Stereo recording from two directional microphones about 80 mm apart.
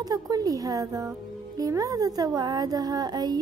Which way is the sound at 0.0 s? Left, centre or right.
Right.